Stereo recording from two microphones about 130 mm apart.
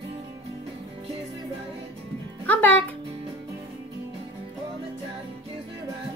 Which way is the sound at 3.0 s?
40° right (ahead or behind).